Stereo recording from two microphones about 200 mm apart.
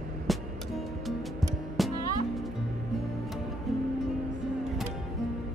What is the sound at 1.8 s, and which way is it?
Music, centre (ahead or behind).